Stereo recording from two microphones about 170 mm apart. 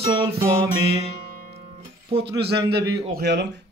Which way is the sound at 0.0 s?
35° right (ahead or behind).